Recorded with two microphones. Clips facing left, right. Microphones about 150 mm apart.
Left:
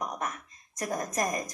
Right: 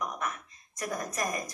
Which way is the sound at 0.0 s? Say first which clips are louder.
Left 1 dB; 45° left (ahead or behind).